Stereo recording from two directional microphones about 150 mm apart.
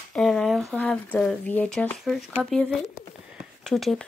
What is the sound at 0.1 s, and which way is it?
Speech, 5° left (ahead or behind).